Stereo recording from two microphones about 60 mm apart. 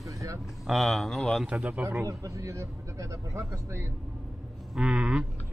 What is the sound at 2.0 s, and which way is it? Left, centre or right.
Speech, right.